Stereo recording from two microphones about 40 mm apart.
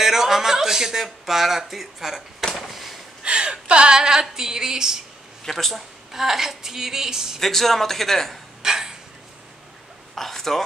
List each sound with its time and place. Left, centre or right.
0.0 s speech: centre
3.3 s speech: right
5.4 s speech: centre
6.1 s speech: centre
7.3 s speech: centre
8.6 s a sound: centre
10.1 s a sound: centre